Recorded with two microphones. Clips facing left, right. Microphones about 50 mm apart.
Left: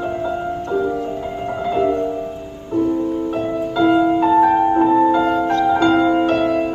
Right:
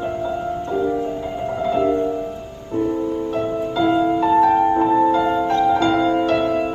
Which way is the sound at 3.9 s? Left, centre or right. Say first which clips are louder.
Left 2 dB; centre.